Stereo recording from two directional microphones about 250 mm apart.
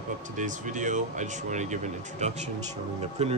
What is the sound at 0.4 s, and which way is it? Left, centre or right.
Speech, right.